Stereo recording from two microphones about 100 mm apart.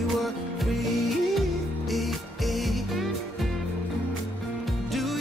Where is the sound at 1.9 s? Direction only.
Centre (ahead or behind).